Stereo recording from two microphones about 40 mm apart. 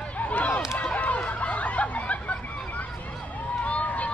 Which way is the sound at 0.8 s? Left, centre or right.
Left.